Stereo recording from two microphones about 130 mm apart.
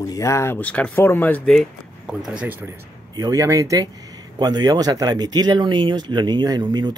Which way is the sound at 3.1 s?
25° right (ahead or behind).